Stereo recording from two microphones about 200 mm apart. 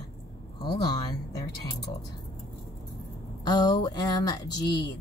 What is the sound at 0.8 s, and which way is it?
Speech, 20° left (ahead or behind).